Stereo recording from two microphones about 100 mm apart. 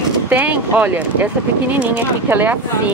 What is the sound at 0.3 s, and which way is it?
Speech, 15° right (ahead or behind).